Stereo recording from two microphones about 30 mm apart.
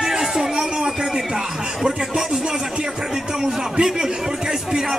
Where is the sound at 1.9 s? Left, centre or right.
Centre.